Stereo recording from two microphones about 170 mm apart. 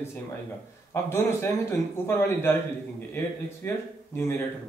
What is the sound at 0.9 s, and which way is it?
Speech, 15° left (ahead or behind).